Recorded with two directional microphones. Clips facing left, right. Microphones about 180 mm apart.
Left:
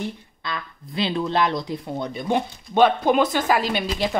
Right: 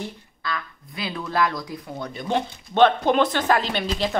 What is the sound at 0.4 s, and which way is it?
Speech, 25° left (ahead or behind).